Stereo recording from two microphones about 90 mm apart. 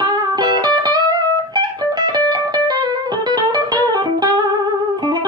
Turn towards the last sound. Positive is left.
turn(degrees=-50)  # may be behind; listen again after turning